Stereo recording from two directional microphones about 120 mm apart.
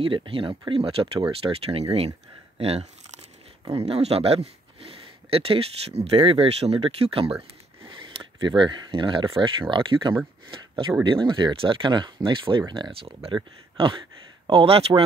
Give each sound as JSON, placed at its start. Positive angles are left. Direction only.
{"t": 0.0, "sound": "speech", "side_deg": -45}
{"t": 7.8, "sound": "a sound", "side_deg": -45}
{"t": 9.4, "sound": "speech", "side_deg": -45}
{"t": 11.1, "sound": "speech", "side_deg": -40}